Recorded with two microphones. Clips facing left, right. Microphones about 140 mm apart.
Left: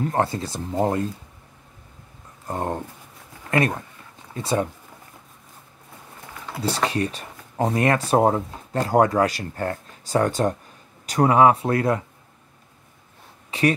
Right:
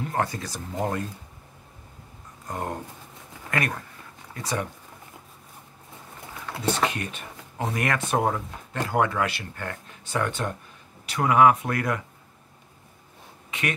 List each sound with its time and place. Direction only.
0.0 s speech: 30° left (ahead or behind)
2.4 s speech: 30° left (ahead or behind)
6.6 s speech: 35° left (ahead or behind)
13.5 s a sound: 35° left (ahead or behind)